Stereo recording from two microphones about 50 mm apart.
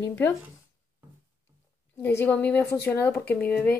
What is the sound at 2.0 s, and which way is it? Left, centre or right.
Speech, left.